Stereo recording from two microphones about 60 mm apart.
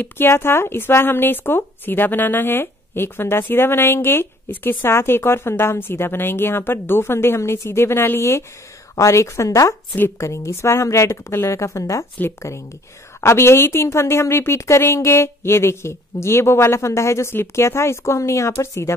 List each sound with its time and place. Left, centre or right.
0.2 s a woman's voice: left